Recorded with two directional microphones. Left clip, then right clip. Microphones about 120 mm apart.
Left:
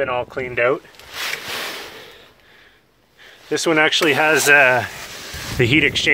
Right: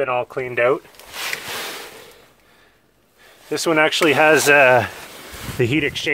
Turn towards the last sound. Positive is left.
turn(degrees=0)  # may be behind; listen again after turning